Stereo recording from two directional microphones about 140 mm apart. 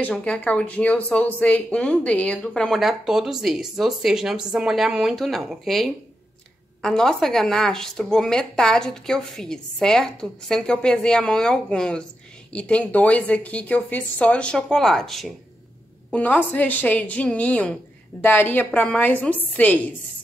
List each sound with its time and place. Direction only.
0.0 s speech: 5° left (ahead or behind)